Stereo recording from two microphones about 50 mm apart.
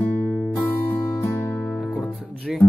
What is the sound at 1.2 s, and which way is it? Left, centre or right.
Music, left.